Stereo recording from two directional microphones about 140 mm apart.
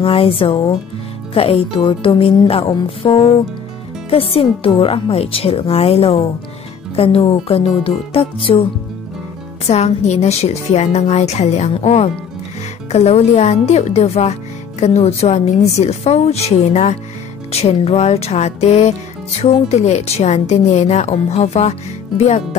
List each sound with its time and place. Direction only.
0.0 s speech: 40° left (ahead or behind)
9.7 s speech: 50° left (ahead or behind)